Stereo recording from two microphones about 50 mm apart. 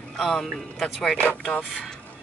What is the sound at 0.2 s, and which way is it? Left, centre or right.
Speech, centre.